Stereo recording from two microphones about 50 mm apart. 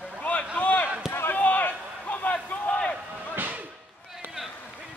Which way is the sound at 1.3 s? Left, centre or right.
Left.